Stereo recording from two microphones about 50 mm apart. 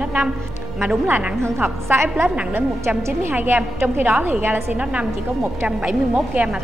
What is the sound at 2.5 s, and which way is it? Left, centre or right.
Speech, right.